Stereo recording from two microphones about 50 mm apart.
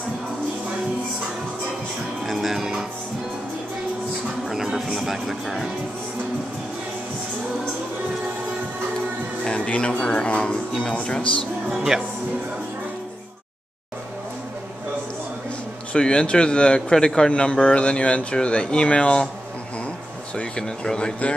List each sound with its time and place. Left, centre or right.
2.2 s music: centre
4.5 s music: centre
9.4 s music: centre
9.9 s speech: left
11.7 s speech: centre
15.9 s speech: centre
20.3 s speech: centre